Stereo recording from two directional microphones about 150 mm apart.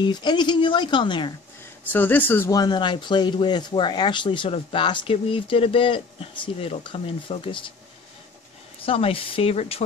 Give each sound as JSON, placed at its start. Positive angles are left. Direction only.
{"t": 0.0, "sound": "speech", "side_deg": 30}
{"t": 1.9, "sound": "speech", "side_deg": 10}
{"t": 8.8, "sound": "speech", "side_deg": 40}